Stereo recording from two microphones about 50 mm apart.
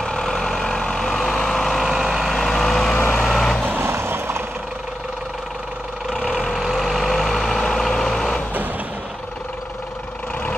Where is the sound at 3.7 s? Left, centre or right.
Right.